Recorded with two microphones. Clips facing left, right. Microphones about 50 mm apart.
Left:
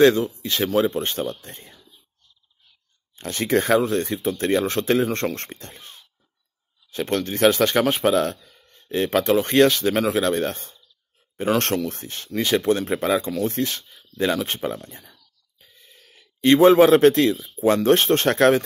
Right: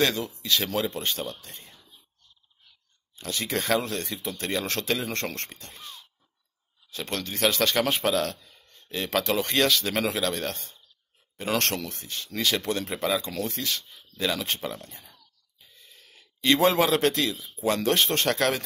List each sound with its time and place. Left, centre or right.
0.0 s speech: left
3.2 s speech: left
3.7 s speech: left
12.4 s speech: left
15.6 s a sound: left
17.8 s speech: left